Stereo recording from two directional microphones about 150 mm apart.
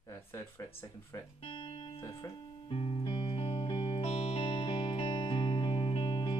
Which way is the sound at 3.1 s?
35° left (ahead or behind).